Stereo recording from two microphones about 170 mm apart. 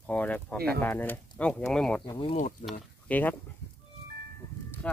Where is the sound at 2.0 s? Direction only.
30° left (ahead or behind).